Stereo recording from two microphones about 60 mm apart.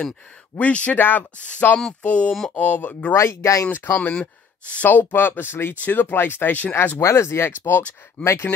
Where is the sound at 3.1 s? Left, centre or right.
Left.